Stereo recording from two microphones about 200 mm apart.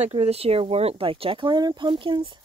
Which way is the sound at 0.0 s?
30° right (ahead or behind).